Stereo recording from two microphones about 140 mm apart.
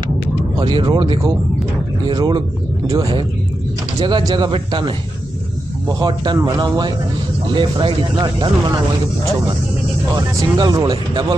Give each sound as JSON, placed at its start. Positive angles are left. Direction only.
{"t": 0.6, "sound": "speech", "side_deg": -30}
{"t": 4.0, "sound": "speech", "side_deg": -30}
{"t": 10.1, "sound": "speech", "side_deg": -30}